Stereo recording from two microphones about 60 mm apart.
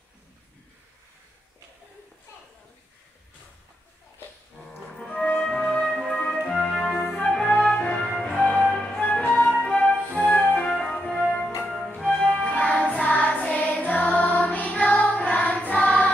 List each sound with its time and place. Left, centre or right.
4.6 s music: centre
5.1 s music: centre
5.5 s music: centre
7.0 s music: left
10.1 s flute: centre
10.8 s music: centre